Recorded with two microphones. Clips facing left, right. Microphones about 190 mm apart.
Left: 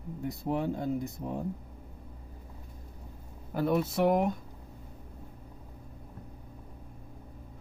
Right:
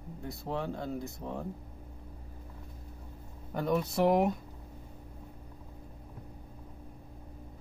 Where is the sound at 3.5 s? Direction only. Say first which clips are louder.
Left 2 dB; 5° left (ahead or behind).